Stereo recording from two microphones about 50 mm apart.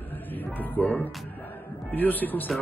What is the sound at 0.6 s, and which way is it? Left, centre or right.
Speech, left.